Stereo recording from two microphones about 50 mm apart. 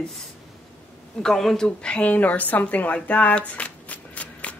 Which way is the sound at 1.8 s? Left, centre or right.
Left.